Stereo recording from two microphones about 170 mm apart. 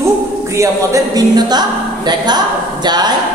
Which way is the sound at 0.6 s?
20° right (ahead or behind).